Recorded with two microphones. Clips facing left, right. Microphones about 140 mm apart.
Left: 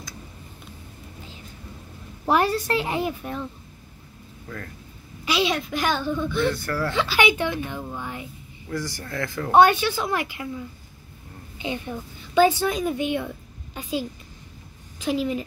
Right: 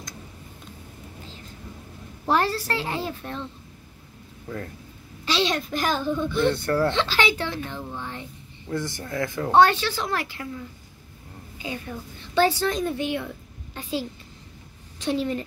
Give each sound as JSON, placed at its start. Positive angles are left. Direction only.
{"t": 2.2, "sound": "speech", "side_deg": 15}
{"t": 5.2, "sound": "a woman's voice", "side_deg": 10}
{"t": 6.5, "sound": "speech", "side_deg": -30}
{"t": 6.9, "sound": "speech", "side_deg": 10}
{"t": 8.6, "sound": "speech", "side_deg": -20}
{"t": 9.5, "sound": "speech", "side_deg": 15}
{"t": 11.5, "sound": "a woman's voice", "side_deg": 25}
{"t": 12.4, "sound": "speech", "side_deg": 10}
{"t": 15.0, "sound": "speech", "side_deg": 5}